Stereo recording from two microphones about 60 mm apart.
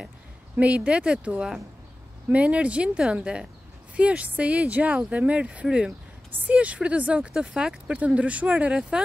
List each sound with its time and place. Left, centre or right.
0.6 s speech: right